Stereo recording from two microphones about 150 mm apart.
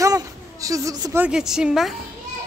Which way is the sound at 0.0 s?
20° right (ahead or behind).